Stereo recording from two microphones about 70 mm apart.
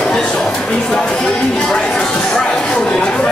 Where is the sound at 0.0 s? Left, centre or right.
Centre.